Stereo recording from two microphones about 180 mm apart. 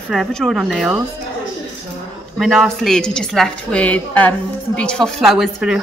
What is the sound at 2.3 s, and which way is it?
A woman's voice, centre (ahead or behind).